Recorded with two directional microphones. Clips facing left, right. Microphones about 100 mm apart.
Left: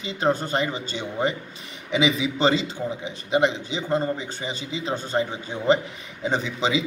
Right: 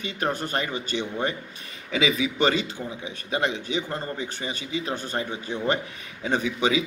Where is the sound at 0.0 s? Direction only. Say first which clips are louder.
Left 4 dB; 25° left (ahead or behind).